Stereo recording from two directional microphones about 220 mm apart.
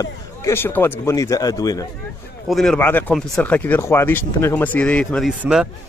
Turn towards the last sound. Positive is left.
turn(degrees=-5)  # may be behind; listen again after turning